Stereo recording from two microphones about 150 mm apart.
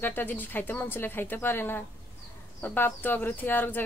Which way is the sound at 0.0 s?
15° left (ahead or behind).